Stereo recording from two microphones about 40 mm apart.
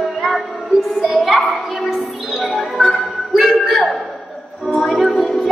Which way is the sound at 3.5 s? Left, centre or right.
Centre.